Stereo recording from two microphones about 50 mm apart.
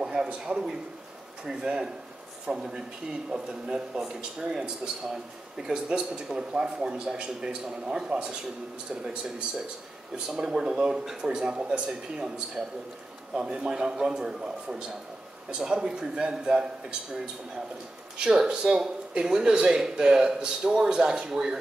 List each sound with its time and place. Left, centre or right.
0.0 s a sound: centre
1.4 s speech: centre
10.1 s speech: centre
18.2 s speech: centre